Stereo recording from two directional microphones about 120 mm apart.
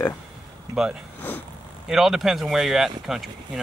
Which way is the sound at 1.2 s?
15° left (ahead or behind).